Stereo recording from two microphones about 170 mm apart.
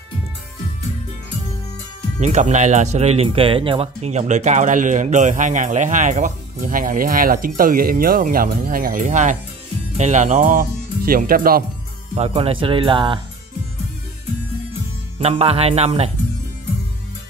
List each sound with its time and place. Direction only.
2.1 s speech: 45° right (ahead or behind); by 11.6 s 60° right (ahead or behind)
12.2 s speech: 35° right (ahead or behind)
15.1 s speech: 35° right (ahead or behind)